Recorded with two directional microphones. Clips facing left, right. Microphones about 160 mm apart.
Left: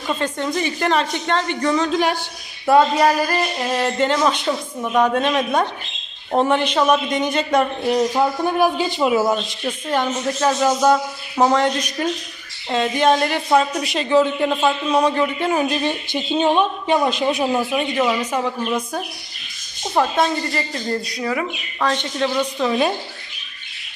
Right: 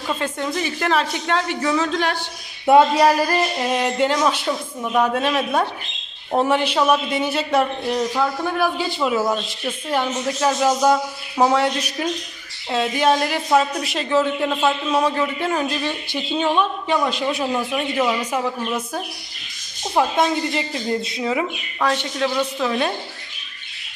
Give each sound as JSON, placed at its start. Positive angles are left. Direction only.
{"t": 0.2, "sound": "speech", "side_deg": -5}
{"t": 2.6, "sound": "speech", "side_deg": -20}
{"t": 7.8, "sound": "speech", "side_deg": 20}
{"t": 9.8, "sound": "speech", "side_deg": -5}
{"t": 15.5, "sound": "speech", "side_deg": 20}
{"t": 17.6, "sound": "speech", "side_deg": 0}
{"t": 19.9, "sound": "speech", "side_deg": -10}